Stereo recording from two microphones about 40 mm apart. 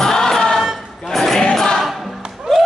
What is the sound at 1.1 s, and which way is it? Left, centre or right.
Choir, centre.